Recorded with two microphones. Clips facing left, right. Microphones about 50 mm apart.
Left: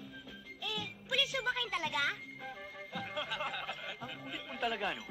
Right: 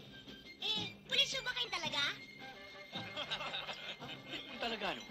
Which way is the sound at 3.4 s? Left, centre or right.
Centre.